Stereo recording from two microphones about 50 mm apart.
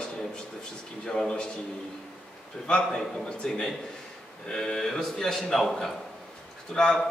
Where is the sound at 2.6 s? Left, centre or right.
Centre.